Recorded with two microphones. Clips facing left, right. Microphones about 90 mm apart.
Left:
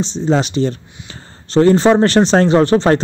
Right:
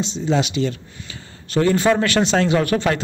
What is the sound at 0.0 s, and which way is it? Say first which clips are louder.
Speech: left 4 dB; 40° left (ahead or behind).